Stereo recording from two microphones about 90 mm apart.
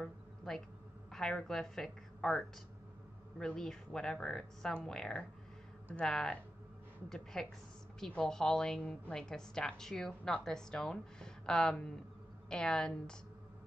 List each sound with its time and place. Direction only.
1.1 s a woman's voice: 5° left (ahead or behind)